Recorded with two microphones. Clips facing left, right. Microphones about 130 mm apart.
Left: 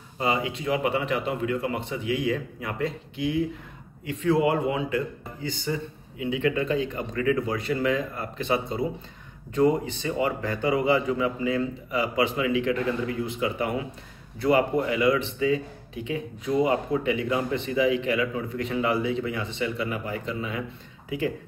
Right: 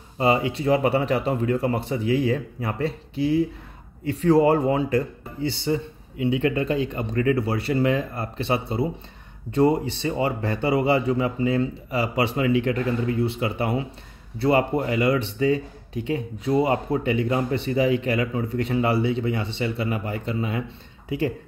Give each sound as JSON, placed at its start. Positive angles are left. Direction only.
{"t": 0.2, "sound": "a man's voice", "side_deg": -35}